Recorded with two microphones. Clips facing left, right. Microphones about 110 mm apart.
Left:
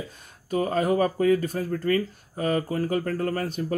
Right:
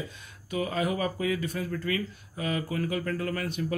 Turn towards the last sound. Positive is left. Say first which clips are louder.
# left 4 dB
turn(degrees=40)  # may be behind; listen again after turning